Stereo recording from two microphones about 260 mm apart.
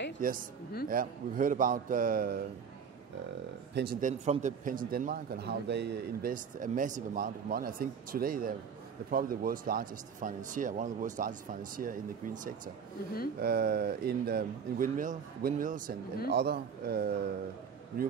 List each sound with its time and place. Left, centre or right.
0.2 s speech: right
3.7 s speech: right
13.4 s speech: right